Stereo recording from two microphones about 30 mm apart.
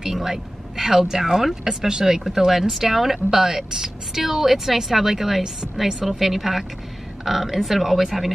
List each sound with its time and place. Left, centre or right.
0.1 s speech: centre